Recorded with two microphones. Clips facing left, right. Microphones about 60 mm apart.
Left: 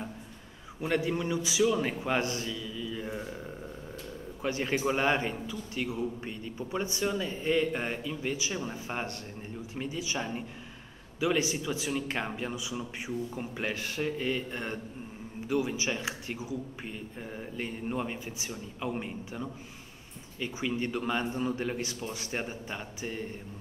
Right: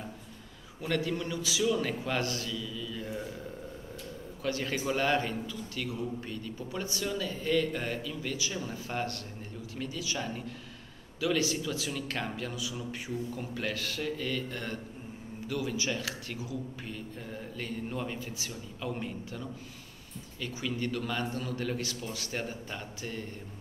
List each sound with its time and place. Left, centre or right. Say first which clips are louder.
0.7 s a man's voice: left 2 dB; left
4.4 s a man's voice: left 2 dB; left